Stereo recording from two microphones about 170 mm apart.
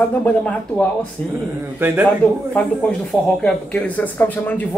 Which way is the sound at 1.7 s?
10° right (ahead or behind).